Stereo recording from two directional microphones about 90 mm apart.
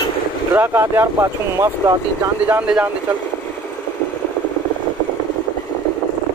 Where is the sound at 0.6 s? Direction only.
25° right (ahead or behind).